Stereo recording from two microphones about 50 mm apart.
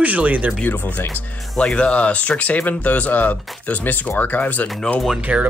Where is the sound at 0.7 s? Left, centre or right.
Left.